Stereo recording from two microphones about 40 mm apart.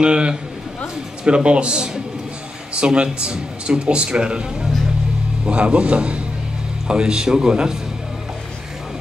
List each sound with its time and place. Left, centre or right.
0.0 s speech: right